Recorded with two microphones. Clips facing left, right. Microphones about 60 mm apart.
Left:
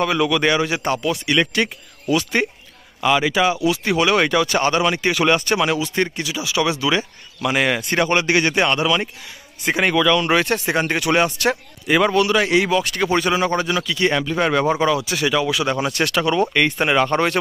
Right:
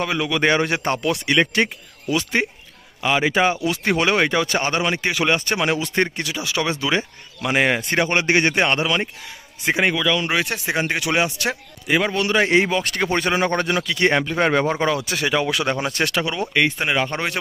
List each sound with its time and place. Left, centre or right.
0.0 s speech: centre
0.6 s speech: right
1.5 s a man's voice: right
6.1 s speech: right
6.6 s a man's voice: right
9.7 s speech: centre
12.2 s a man's voice: right
13.6 s speech: right
14.1 s speech: right
15.7 s a man's voice: right
16.3 s speech: centre
16.7 s speech: centre